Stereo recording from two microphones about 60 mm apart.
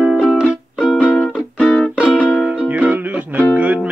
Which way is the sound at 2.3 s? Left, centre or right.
Right.